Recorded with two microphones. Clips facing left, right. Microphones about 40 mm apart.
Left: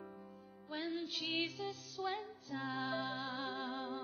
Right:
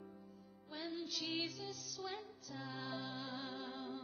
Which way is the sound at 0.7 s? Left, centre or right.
Left.